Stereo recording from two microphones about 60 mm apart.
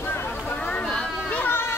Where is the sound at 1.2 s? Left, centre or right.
Left.